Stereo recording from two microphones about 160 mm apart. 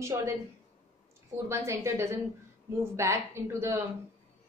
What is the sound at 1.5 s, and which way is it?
A woman's voice, 15° right (ahead or behind).